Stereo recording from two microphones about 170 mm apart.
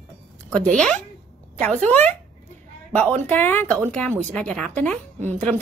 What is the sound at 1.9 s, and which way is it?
A woman's voice, 10° left (ahead or behind).